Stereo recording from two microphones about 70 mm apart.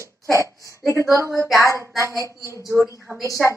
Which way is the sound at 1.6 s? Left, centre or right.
Left.